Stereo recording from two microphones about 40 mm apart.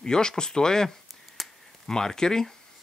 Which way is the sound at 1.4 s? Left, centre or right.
Centre.